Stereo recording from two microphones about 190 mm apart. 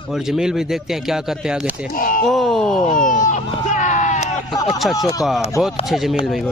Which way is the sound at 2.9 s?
45° left (ahead or behind).